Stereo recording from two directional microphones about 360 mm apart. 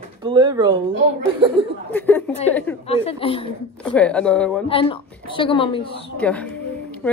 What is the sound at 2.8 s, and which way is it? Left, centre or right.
Speech, centre.